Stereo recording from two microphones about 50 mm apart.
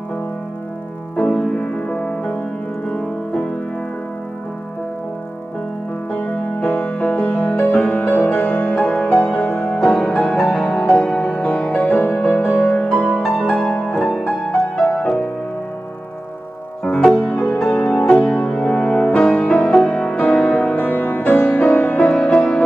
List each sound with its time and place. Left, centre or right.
1.1 s music: centre
6.1 s music: left
16.8 s music: centre
17.2 s music: left